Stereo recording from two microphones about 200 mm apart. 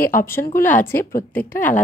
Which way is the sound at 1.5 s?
40° left (ahead or behind).